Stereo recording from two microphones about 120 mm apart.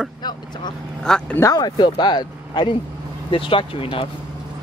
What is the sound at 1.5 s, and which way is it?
Speech, 35° left (ahead or behind).